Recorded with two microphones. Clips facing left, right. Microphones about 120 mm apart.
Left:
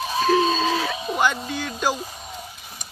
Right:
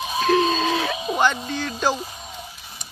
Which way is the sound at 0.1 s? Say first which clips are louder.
Even; centre (ahead or behind).